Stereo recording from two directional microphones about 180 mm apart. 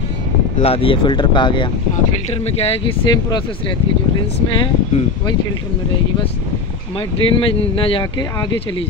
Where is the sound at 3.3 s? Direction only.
30° left (ahead or behind).